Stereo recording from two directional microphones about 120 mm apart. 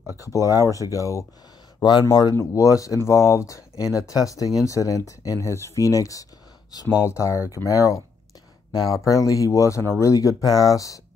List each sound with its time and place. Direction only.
0.2 s speech: 30° left (ahead or behind)